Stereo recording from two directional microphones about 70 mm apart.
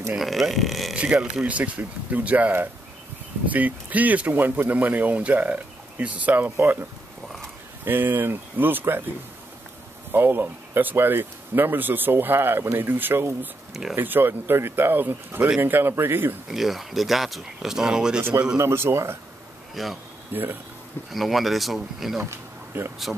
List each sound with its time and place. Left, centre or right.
0.2 s speech: centre
0.9 s speech: centre
6.5 s speech: right
10.1 s speech: right
16.4 s speech: centre
18.6 s speech: right
19.7 s speech: centre
20.3 s speech: right
21.1 s speech: centre
22.2 s a sound: right